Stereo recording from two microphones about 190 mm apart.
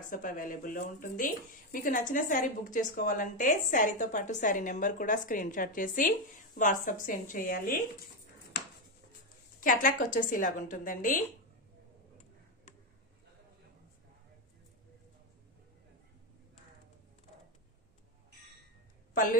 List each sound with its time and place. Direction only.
0.1 s speech: 45° left (ahead or behind)
9.6 s speech: 45° left (ahead or behind)